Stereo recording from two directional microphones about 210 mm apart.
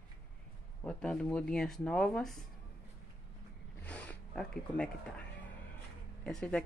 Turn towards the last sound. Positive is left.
turn(degrees=5)  # may be behind; listen again after turning